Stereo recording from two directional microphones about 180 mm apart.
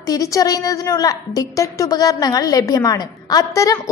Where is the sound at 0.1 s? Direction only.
20° left (ahead or behind).